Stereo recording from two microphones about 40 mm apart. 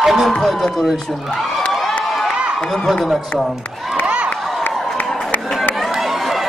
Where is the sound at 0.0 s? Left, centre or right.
Centre.